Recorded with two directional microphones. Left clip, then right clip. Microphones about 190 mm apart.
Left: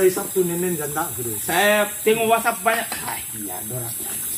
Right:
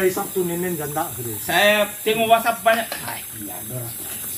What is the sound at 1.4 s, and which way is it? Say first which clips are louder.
Speech: right 1 dB; 35° right (ahead or behind).